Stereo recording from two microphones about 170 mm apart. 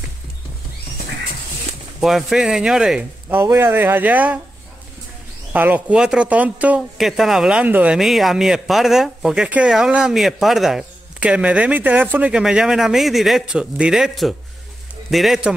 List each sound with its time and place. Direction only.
2.0 s speech: centre (ahead or behind)
5.5 s speech: 10° right (ahead or behind)